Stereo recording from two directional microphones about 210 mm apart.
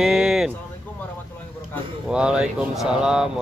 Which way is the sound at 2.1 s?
5° right (ahead or behind).